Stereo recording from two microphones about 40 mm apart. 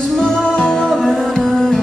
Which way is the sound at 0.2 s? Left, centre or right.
Centre.